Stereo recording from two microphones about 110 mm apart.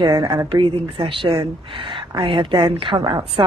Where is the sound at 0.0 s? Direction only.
45° right (ahead or behind).